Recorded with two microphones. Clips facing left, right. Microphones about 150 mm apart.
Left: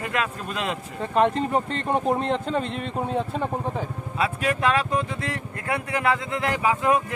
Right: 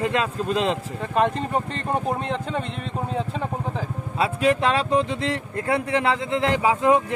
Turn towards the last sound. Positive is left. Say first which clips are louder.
# right 3 dB
turn(degrees=-25)  # may be behind; listen again after turning